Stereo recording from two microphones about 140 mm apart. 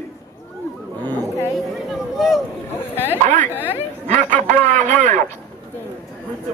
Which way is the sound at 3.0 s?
15° left (ahead or behind).